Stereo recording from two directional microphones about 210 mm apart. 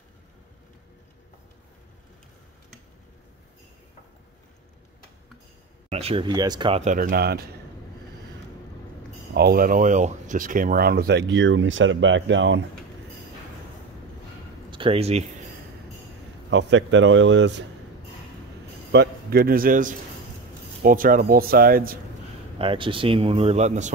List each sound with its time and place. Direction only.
5.9 s speech: 30° right (ahead or behind)
6.8 s speech: 40° right (ahead or behind)
9.3 s speech: 45° right (ahead or behind)
14.7 s speech: 25° right (ahead or behind)
16.4 s a man's voice: 60° right (ahead or behind)
18.9 s a man's voice: 50° right (ahead or behind)
22.6 s speech: 25° right (ahead or behind)